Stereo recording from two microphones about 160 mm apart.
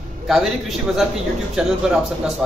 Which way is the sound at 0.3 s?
Centre (ahead or behind).